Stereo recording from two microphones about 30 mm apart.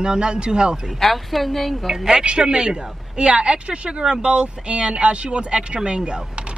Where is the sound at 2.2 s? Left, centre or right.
Right.